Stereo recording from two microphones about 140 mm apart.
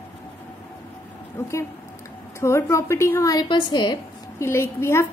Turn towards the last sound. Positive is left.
turn(degrees=20)  # may be behind; listen again after turning